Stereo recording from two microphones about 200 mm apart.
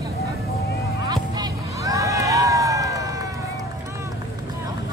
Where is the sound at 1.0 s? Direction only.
20° right (ahead or behind).